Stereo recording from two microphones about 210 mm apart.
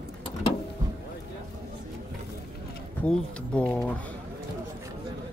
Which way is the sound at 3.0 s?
5° left (ahead or behind).